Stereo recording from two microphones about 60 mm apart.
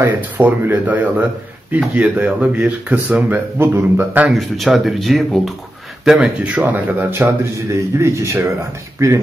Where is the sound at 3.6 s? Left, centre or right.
Right.